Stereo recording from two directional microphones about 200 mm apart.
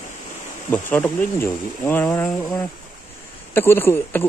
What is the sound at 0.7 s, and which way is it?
Speech, 10° left (ahead or behind).